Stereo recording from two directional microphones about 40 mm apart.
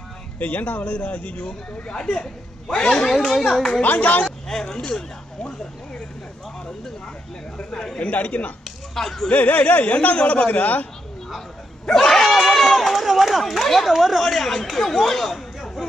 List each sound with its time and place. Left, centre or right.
0.4 s speech: left
1.9 s speech: centre
3.8 s speech: left
4.5 s speech: centre
4.7 s speech: left
7.7 s speech: centre
8.0 s speech: left
8.9 s speech: centre
9.3 s speech: left
11.8 s run: centre
13.4 s speech: centre
14.2 s speech: centre